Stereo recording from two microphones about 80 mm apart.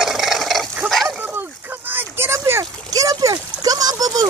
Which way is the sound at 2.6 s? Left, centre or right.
Right.